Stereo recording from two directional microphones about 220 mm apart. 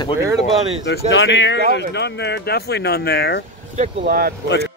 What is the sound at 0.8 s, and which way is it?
Speech, 55° left (ahead or behind).